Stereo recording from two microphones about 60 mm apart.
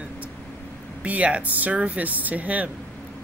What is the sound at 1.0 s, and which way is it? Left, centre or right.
Speech, right.